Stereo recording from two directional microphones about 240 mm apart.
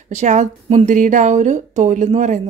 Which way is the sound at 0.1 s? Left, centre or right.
Right.